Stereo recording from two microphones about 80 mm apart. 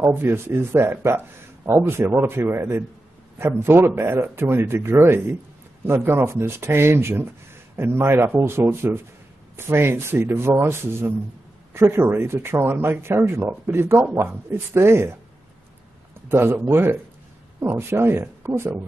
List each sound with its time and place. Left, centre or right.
0.0 s a man's voice: right
16.3 s a man's voice: right